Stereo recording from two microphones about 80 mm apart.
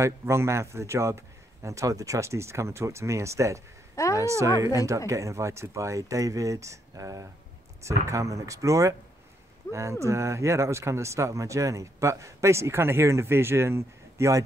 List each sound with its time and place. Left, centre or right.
0.0 s speech: right
3.9 s a sound: left
4.2 s speech: right